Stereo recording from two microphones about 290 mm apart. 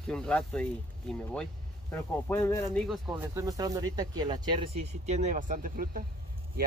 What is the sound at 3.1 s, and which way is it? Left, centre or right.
Speech, centre.